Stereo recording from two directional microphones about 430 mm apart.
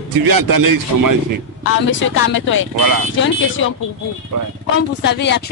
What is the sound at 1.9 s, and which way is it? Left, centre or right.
Speech, left.